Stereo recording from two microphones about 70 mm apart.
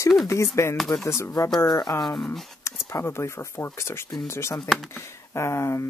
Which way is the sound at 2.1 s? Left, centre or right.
Centre.